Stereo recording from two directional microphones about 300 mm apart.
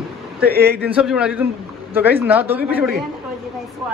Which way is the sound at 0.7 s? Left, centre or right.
Centre.